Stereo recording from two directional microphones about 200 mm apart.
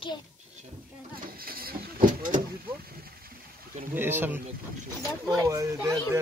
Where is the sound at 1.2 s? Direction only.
45° right (ahead or behind).